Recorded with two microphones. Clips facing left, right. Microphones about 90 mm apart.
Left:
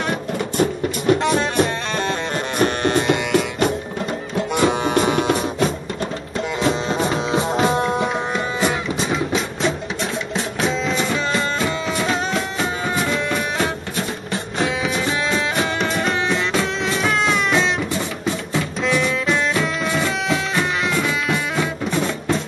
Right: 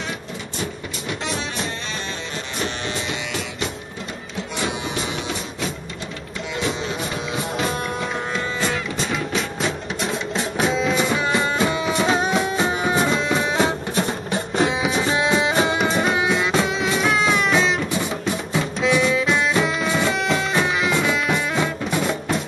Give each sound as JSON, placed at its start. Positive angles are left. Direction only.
{"t": 0.6, "sound": "music", "side_deg": 50}
{"t": 6.6, "sound": "music", "side_deg": 40}
{"t": 7.6, "sound": "music", "side_deg": 20}
{"t": 10.3, "sound": "music", "side_deg": -5}
{"t": 16.0, "sound": "music", "side_deg": -5}
{"t": 18.9, "sound": "music", "side_deg": -10}